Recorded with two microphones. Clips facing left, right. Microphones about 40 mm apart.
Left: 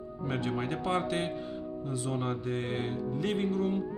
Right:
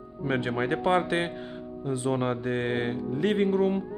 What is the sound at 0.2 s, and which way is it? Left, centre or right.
Speech, right.